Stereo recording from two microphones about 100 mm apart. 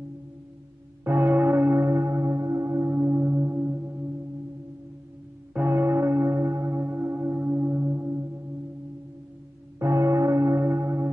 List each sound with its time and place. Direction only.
1.0 s church bell: 20° right (ahead or behind)
5.5 s church bell: 20° right (ahead or behind)
9.8 s church bell: 30° right (ahead or behind)